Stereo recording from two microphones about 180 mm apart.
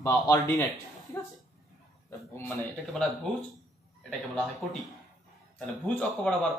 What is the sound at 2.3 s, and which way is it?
Speech, 5° left (ahead or behind).